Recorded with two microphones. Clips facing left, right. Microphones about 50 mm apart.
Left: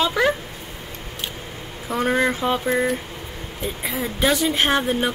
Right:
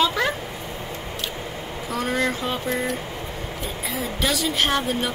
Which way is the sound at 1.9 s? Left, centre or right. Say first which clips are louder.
Left 4 dB; left.